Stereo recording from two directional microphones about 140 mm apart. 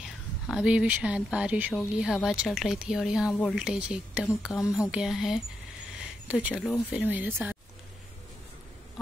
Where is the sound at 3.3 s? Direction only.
10° left (ahead or behind).